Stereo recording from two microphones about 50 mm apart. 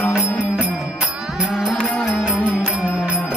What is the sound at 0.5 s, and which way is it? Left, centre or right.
Music, right.